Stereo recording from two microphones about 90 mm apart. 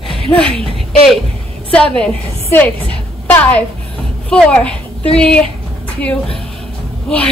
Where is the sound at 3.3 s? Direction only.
15° left (ahead or behind).